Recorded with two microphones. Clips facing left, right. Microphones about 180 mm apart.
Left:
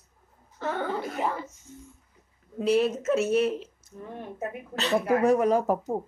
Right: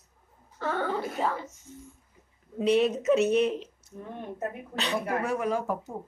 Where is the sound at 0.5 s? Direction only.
15° left (ahead or behind).